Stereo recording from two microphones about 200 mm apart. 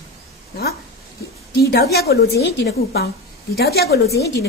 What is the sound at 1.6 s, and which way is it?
A woman's voice, 50° left (ahead or behind).